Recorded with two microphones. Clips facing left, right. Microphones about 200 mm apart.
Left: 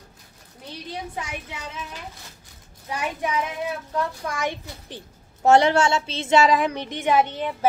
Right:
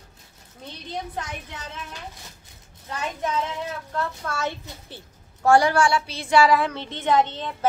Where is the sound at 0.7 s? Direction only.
10° left (ahead or behind).